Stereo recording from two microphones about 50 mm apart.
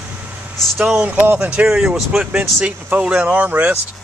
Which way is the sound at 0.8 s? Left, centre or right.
Centre.